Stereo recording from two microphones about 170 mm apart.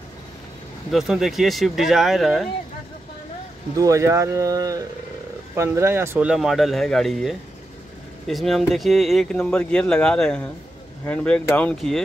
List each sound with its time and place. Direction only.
0.9 s speech: centre (ahead or behind)
3.7 s speech: 20° right (ahead or behind); by 12.0 s 5° left (ahead or behind)